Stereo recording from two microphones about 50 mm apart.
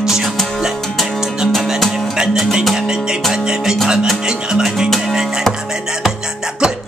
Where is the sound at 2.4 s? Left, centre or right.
Centre.